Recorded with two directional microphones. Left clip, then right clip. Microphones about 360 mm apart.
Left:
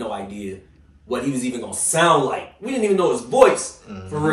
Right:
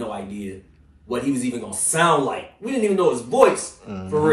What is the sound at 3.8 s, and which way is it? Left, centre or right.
Speech, centre.